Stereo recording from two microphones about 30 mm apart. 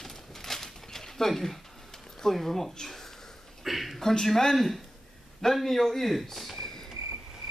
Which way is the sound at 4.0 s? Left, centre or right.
Centre.